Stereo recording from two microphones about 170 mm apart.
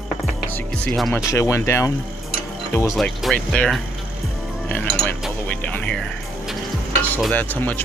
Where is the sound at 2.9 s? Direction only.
5° left (ahead or behind).